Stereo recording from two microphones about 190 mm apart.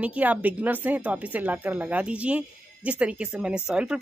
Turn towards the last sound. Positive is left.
turn(degrees=-5)  # may be behind; listen again after turning